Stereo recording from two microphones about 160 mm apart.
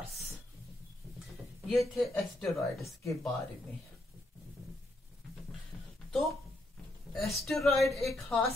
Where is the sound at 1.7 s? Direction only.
Centre (ahead or behind).